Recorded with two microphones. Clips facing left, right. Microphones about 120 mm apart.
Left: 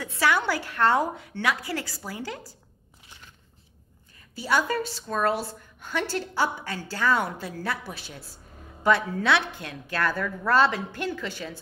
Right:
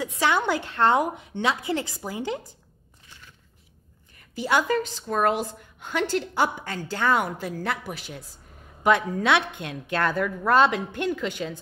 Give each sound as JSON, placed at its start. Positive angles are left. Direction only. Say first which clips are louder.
{"t": 0.0, "sound": "a woman's voice", "louder": "right 1 dB", "side_deg": -20}
{"t": 5.0, "sound": "a woman's voice", "louder": "right 1 dB", "side_deg": -15}